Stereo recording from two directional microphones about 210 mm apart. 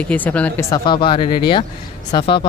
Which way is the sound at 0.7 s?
20° left (ahead or behind).